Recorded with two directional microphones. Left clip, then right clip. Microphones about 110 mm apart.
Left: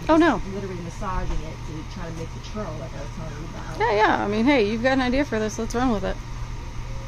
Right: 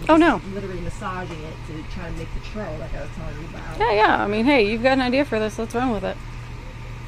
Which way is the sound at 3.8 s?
5° left (ahead or behind).